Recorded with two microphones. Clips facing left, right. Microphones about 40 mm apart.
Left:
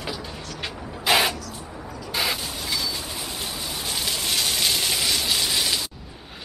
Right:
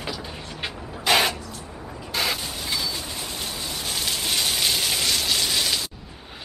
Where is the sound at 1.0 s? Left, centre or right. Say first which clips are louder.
Even; centre.